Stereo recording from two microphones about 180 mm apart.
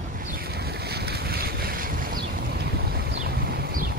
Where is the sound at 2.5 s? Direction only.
60° right (ahead or behind).